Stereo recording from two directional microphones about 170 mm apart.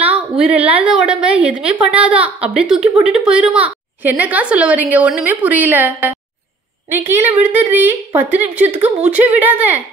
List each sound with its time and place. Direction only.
0.0 s a woman's voice: 10° right (ahead or behind)